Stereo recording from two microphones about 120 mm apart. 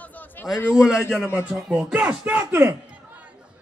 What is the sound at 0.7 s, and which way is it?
Speech, 5° right (ahead or behind).